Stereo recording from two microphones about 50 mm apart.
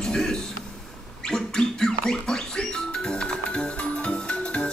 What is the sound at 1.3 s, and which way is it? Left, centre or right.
Gargling, centre.